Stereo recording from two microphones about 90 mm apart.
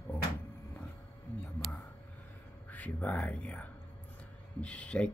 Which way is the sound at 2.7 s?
15° left (ahead or behind).